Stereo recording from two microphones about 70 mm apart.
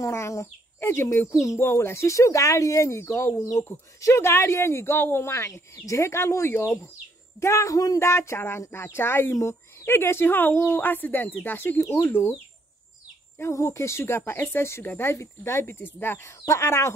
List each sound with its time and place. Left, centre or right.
0.0 s speech: left
8.1 s speech: left
13.4 s speech: left